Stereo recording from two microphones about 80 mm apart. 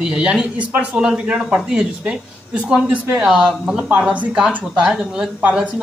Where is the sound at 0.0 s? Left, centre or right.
Centre.